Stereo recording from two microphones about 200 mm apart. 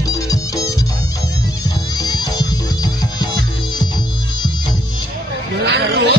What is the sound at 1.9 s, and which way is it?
Music, 20° left (ahead or behind).